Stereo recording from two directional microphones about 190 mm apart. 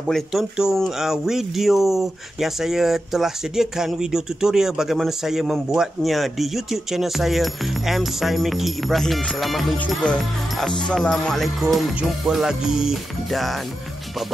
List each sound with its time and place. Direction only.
0.1 s speech: centre (ahead or behind)